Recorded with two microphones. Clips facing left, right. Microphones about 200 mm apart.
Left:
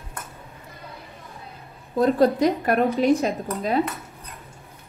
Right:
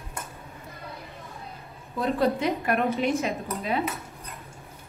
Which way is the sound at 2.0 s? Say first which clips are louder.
Left 6 dB; 45° left (ahead or behind).